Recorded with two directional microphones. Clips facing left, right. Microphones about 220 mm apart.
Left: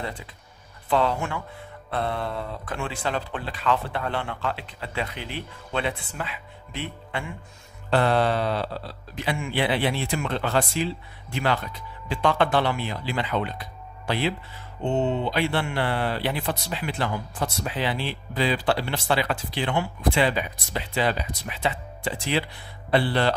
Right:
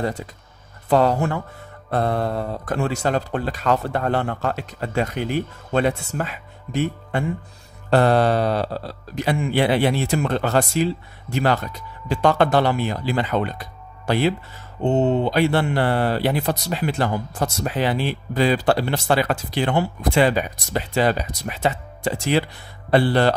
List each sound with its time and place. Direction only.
0.0 s speech: 45° right (ahead or behind)